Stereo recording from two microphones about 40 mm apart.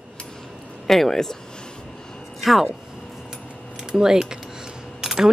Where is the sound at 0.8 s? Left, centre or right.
Centre.